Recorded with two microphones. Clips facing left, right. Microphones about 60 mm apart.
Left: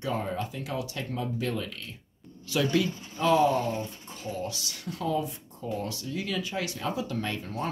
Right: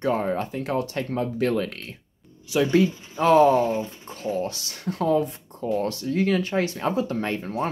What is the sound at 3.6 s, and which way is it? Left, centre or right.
Speech, right.